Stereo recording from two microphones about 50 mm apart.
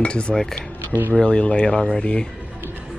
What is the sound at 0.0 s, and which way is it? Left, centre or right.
Speech, centre.